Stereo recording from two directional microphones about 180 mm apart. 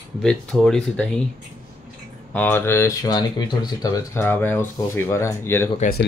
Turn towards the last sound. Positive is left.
turn(degrees=55)  # may be behind; listen again after turning